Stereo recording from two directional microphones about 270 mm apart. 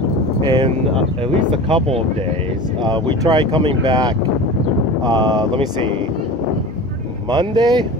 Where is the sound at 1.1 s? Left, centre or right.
Right.